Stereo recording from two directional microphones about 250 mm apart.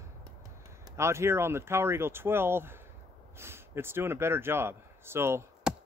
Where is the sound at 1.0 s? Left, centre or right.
Centre.